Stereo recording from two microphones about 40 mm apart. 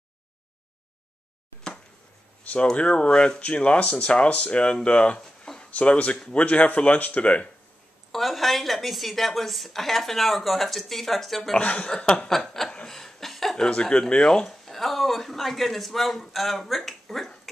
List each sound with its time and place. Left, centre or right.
2.5 s speech: left
8.1 s a woman's voice: centre
11.5 s speech: left
12.3 s chuckle: centre
13.6 s speech: left
14.4 s speech: centre